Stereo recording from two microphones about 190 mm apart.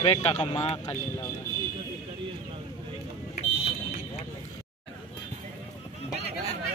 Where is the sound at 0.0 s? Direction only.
30° left (ahead or behind).